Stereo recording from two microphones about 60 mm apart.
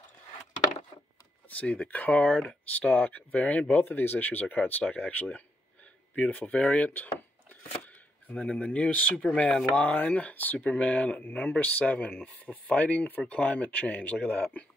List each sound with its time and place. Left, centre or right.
1.5 s speech: left
8.3 s speech: left